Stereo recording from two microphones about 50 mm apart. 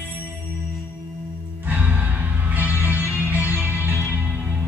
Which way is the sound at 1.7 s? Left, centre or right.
Right.